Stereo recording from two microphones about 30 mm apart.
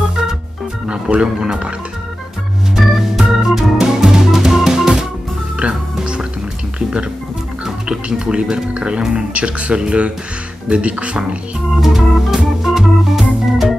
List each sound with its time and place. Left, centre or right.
0.8 s speech: right
1.2 s speech: right
2.9 s organ: centre
3.8 s music: centre
5.6 s music: right
7.6 s speech: right
11.8 s organ: centre